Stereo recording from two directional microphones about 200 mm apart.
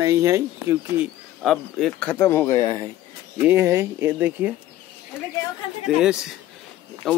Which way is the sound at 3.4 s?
10° right (ahead or behind).